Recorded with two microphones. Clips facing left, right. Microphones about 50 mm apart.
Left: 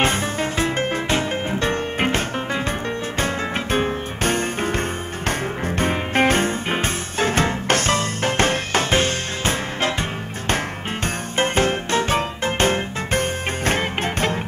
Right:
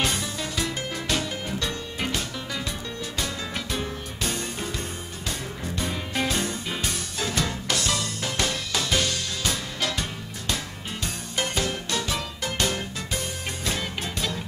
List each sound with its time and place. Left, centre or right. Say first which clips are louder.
0.0 s music: left 7 dB; left
11.3 s music: left 8 dB; left